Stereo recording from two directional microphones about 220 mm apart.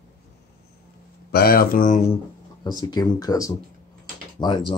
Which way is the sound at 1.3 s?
45° left (ahead or behind).